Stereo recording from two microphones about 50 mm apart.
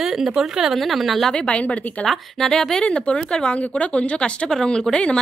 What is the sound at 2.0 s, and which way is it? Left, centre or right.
A woman's voice, centre.